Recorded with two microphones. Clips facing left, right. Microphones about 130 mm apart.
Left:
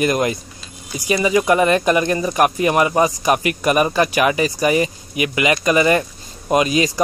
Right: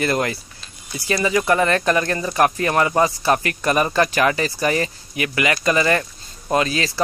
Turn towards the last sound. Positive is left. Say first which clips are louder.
# left 4 dB
turn(degrees=15)  # may be behind; listen again after turning